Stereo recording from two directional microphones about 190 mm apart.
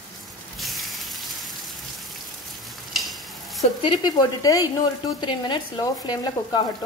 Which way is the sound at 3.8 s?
20° left (ahead or behind).